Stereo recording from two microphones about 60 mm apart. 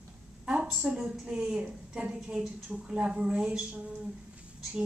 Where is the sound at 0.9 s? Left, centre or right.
Centre.